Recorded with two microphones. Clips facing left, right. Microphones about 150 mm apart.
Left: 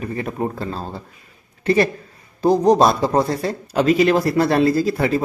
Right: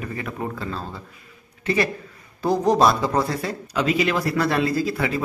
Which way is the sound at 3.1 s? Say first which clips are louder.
Left 4 dB; 30° left (ahead or behind).